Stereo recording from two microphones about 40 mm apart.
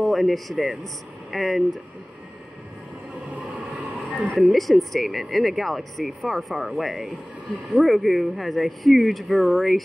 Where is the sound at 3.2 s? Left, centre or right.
Right.